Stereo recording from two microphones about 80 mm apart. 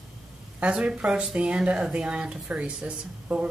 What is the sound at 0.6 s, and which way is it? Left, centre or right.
A woman's voice, centre.